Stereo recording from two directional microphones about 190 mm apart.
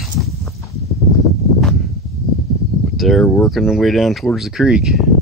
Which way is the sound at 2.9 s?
Centre (ahead or behind).